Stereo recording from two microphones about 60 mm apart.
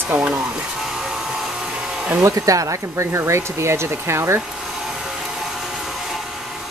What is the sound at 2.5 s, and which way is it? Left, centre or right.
Speech, right.